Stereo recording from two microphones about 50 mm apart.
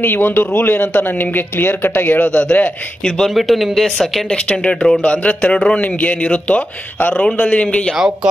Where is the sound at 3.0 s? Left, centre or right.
Centre.